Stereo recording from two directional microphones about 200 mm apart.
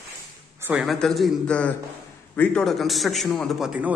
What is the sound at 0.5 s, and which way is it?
A man's voice, 10° right (ahead or behind).